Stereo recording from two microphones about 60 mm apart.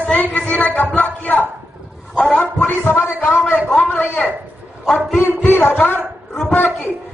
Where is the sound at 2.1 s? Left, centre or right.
Left.